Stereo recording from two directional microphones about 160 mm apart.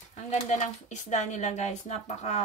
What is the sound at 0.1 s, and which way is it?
A woman's voice, 45° left (ahead or behind).